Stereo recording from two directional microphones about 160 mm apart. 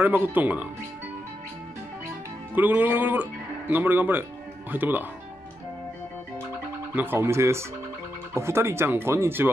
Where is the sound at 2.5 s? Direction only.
10° right (ahead or behind).